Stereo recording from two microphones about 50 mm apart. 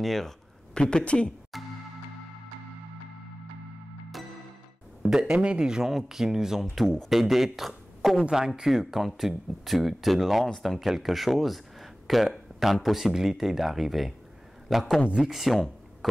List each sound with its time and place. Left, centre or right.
0.0 s speech: centre
0.7 s speech: centre
1.5 s music: centre
5.0 s a man's voice: centre
15.0 s speech: centre
15.3 s speech: centre